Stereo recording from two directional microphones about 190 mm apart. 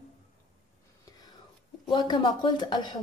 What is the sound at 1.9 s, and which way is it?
A woman's voice, 25° left (ahead or behind).